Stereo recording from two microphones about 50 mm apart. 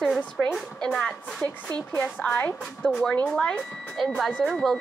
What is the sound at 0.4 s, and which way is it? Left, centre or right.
Speech, centre.